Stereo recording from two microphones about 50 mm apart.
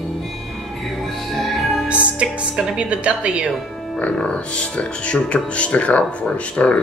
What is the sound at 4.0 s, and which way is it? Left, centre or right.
Speech, left.